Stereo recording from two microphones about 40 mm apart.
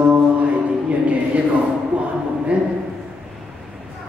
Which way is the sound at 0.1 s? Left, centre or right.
Right.